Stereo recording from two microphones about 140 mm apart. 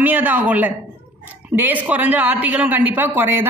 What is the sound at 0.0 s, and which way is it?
A woman's voice, 10° right (ahead or behind).